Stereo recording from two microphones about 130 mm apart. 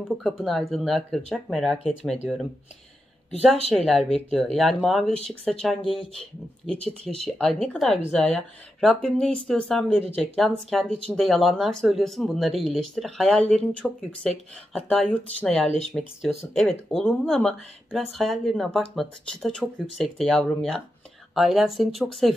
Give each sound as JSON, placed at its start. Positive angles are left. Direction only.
{"t": 0.1, "sound": "speech", "side_deg": 0}
{"t": 3.7, "sound": "speech", "side_deg": 0}
{"t": 5.8, "sound": "speech", "side_deg": 45}
{"t": 6.1, "sound": "speech", "side_deg": 5}
{"t": 16.0, "sound": "speech", "side_deg": -5}